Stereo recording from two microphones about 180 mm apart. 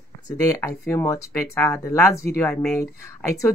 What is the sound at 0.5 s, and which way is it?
Speech, 15° left (ahead or behind).